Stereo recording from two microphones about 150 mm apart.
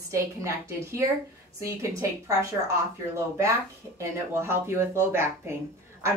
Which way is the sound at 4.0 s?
20° right (ahead or behind).